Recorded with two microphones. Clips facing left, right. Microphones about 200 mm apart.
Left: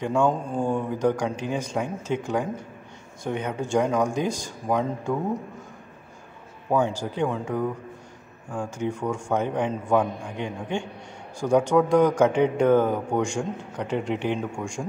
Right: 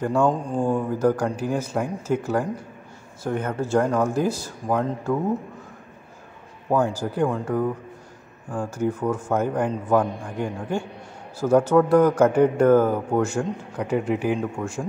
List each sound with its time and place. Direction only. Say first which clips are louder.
0.0 s a man's voice: right 2 dB; 5° right (ahead or behind)
6.7 s a man's voice: right 2 dB; 5° right (ahead or behind)